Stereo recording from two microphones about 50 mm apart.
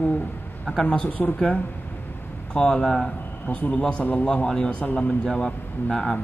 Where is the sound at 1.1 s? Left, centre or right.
Left.